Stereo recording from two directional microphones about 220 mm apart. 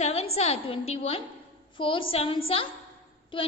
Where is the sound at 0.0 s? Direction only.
30° left (ahead or behind).